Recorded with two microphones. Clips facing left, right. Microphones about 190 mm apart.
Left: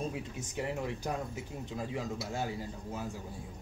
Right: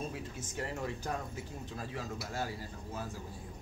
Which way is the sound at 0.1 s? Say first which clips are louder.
Left 2 dB; 15° left (ahead or behind).